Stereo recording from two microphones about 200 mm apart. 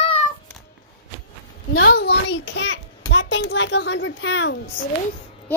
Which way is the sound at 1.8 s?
55° left (ahead or behind).